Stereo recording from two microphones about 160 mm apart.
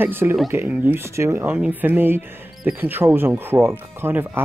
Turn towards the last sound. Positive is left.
turn(degrees=-15)  # may be behind; listen again after turning